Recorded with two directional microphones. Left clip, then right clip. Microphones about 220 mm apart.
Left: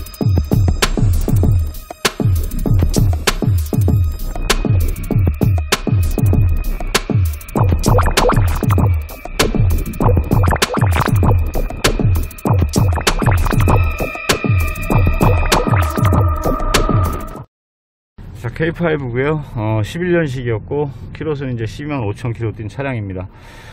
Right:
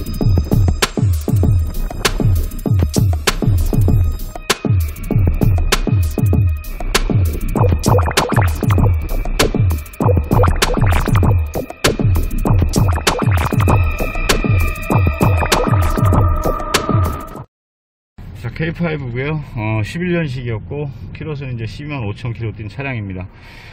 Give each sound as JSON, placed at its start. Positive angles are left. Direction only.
{"t": 0.2, "sound": "music", "side_deg": 0}
{"t": 18.4, "sound": "a man's voice", "side_deg": 20}
{"t": 19.5, "sound": "speech", "side_deg": 10}
{"t": 20.2, "sound": "speech", "side_deg": 30}